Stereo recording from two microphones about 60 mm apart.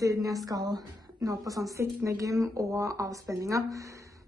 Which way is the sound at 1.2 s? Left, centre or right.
Right.